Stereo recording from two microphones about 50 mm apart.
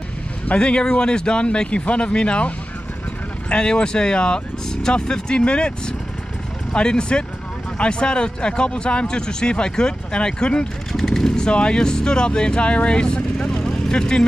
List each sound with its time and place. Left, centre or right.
0.5 s speech: left
10.9 s speech: centre
11.3 s speech: centre